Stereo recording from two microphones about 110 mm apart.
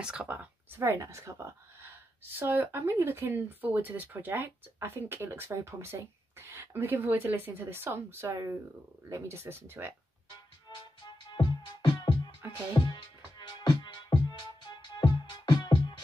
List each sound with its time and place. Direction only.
0.0 s speech: 10° right (ahead or behind)
10.7 s music: 45° left (ahead or behind)